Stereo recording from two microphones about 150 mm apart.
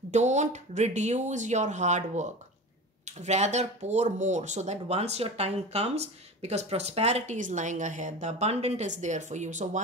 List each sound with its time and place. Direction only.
0.1 s speech: 50° right (ahead or behind)